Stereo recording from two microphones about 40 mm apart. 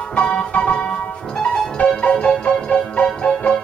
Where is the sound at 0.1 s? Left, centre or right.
Left.